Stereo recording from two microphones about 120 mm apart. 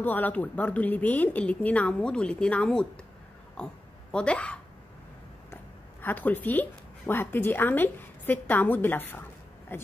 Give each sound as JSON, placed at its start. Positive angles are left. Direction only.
{"t": 0.0, "sound": "speech", "side_deg": 15}